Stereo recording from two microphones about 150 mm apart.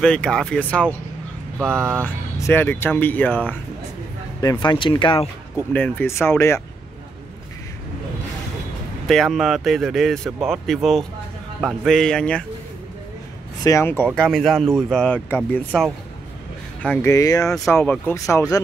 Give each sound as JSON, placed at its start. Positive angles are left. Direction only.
{"t": 0.0, "sound": "speech", "side_deg": 5}
{"t": 2.3, "sound": "speech", "side_deg": 15}
{"t": 4.4, "sound": "speech", "side_deg": 30}
{"t": 5.7, "sound": "speech", "side_deg": 10}
{"t": 9.0, "sound": "speech", "side_deg": 0}
{"t": 13.7, "sound": "speech", "side_deg": 15}
{"t": 14.1, "sound": "speech", "side_deg": 5}
{"t": 16.8, "sound": "speech", "side_deg": 15}